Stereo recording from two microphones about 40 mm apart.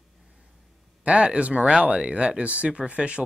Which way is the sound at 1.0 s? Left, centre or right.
Right.